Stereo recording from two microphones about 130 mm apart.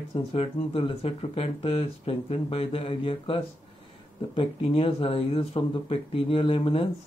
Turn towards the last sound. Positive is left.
turn(degrees=45)  # may be behind; listen again after turning